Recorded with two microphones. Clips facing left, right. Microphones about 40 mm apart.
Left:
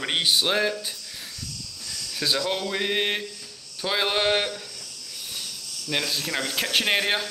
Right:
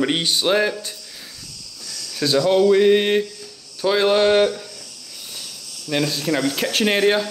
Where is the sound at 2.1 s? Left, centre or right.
Centre.